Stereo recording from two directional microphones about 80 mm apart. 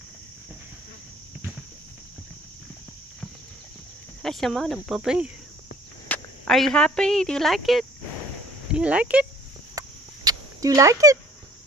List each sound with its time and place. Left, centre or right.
4.2 s a woman's voice: centre
6.1 s cricket: left
6.4 s a woman's voice: centre
8.6 s speech: centre
9.8 s a sound: right